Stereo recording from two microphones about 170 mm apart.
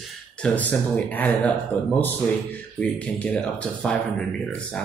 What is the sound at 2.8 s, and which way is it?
Speech, 5° left (ahead or behind).